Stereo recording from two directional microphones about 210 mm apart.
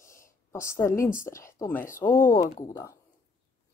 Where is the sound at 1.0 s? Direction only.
15° left (ahead or behind).